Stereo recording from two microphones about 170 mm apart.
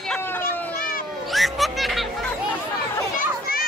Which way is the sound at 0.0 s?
10° left (ahead or behind).